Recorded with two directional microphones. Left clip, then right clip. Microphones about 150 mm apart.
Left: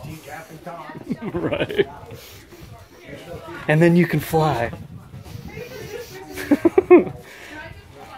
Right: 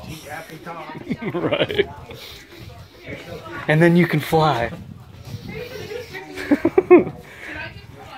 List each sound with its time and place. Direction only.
1.0 s a man's voice: 20° left (ahead or behind)
3.6 s speech: 20° left (ahead or behind)
6.3 s a sound: 45° left (ahead or behind)